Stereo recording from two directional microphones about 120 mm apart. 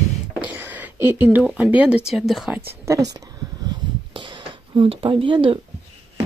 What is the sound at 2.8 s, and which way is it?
Speech, 25° right (ahead or behind).